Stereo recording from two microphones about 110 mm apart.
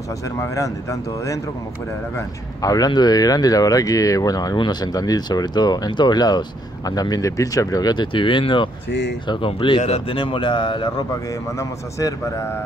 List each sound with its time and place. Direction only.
0.4 s a man's voice: 30° left (ahead or behind); by 9.8 s 50° left (ahead or behind)
9.8 s a man's voice: 70° left (ahead or behind); by 11.1 s 45° left (ahead or behind)
11.5 s speech: 25° left (ahead or behind)